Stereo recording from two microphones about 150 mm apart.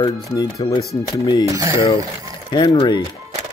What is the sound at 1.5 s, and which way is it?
Speech, 20° right (ahead or behind).